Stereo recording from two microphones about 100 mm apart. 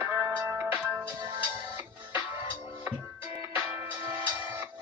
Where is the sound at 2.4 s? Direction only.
30° right (ahead or behind).